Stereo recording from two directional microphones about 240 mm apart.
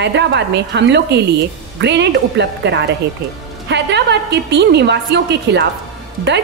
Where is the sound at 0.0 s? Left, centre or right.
Right.